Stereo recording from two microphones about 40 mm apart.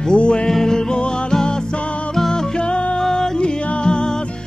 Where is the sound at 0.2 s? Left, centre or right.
Left.